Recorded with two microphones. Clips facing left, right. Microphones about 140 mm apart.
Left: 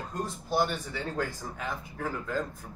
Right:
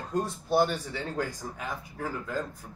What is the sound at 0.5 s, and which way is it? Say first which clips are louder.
Speech: right 4 dB; 35° right (ahead or behind).